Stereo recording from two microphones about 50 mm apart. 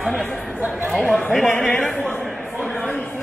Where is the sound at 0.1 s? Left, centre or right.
Centre.